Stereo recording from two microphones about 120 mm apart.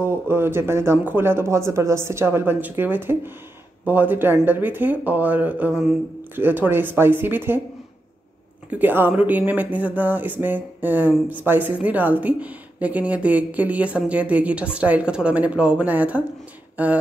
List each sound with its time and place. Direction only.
0.0 s speech: 20° right (ahead or behind)
8.6 s speech: 15° right (ahead or behind)
16.7 s a sound: 15° right (ahead or behind)